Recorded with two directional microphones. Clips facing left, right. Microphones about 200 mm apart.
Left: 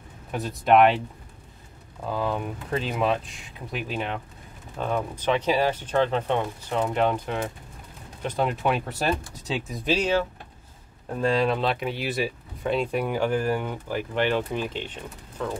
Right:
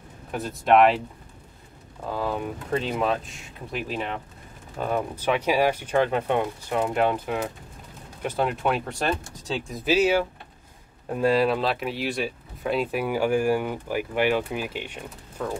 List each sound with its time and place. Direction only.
0.3 s speech: centre (ahead or behind)
2.1 s speech: centre (ahead or behind)